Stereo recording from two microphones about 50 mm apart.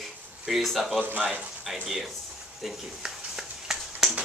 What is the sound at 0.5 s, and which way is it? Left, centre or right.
Speech, centre.